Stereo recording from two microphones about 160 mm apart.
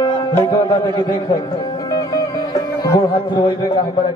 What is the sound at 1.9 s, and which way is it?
Music, 25° left (ahead or behind).